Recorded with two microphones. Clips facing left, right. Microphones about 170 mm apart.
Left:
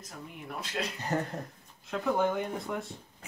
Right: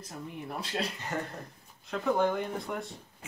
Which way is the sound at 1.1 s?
40° left (ahead or behind).